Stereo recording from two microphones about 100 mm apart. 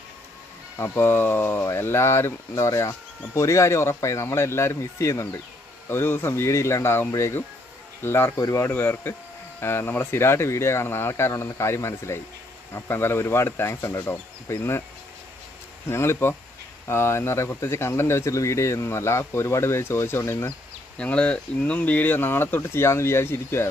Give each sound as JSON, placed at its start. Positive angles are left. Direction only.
{"t": 0.7, "sound": "speech", "side_deg": 25}
{"t": 15.9, "sound": "speech", "side_deg": 25}
{"t": 21.0, "sound": "speech", "side_deg": 10}